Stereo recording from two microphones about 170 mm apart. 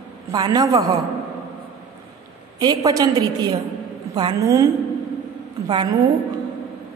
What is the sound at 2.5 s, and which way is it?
A woman's voice, 20° right (ahead or behind).